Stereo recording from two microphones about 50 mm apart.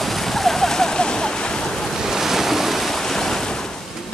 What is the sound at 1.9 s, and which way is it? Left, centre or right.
Waves, centre.